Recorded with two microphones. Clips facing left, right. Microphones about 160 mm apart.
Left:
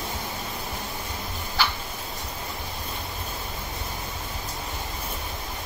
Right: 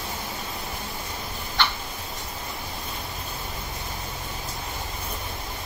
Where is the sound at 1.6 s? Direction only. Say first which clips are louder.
Even; 10° left (ahead or behind).